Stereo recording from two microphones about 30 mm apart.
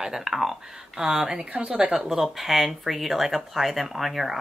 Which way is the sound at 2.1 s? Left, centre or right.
Centre.